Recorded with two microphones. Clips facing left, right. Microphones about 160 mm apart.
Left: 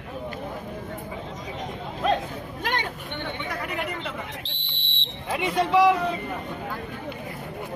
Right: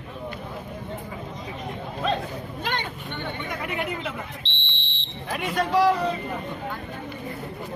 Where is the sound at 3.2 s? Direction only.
5° right (ahead or behind).